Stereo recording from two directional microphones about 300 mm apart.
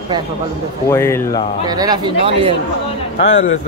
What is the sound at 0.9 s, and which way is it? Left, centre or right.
Speech, centre.